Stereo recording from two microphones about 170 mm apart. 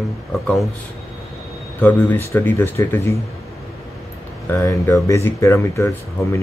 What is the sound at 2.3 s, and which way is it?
Speech, 10° left (ahead or behind).